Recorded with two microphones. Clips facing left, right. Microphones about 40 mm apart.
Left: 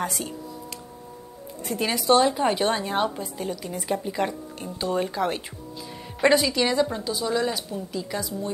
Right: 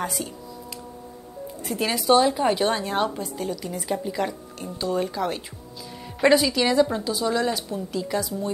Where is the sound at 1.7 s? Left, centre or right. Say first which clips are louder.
Right 1 dB; centre.